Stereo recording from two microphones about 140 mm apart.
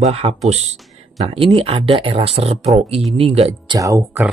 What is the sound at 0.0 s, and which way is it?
Speech, 45° right (ahead or behind).